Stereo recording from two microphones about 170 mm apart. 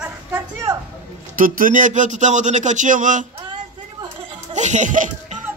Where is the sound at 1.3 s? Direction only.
55° right (ahead or behind).